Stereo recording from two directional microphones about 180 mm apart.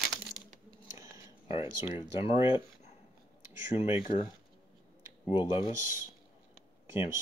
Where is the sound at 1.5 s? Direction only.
30° left (ahead or behind).